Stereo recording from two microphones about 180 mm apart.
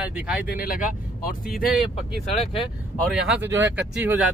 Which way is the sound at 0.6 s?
55° left (ahead or behind).